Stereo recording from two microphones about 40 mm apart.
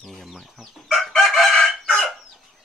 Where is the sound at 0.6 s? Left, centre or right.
Centre.